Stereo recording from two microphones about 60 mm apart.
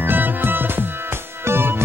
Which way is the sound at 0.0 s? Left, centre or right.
Right.